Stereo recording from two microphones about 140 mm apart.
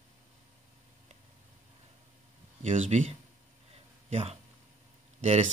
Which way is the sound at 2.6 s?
55° right (ahead or behind).